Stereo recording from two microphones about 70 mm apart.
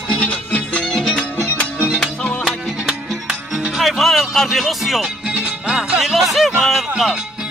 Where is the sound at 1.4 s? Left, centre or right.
Left.